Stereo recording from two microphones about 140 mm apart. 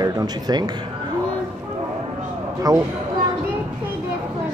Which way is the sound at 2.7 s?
30° right (ahead or behind).